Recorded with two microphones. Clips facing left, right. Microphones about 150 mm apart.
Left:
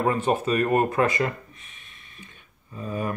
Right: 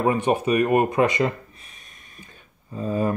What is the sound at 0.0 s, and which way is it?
Speech, 15° right (ahead or behind).